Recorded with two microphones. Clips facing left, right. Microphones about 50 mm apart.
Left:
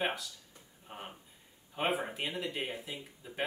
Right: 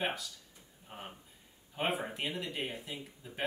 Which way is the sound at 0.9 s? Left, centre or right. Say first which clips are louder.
Left 1 dB; centre.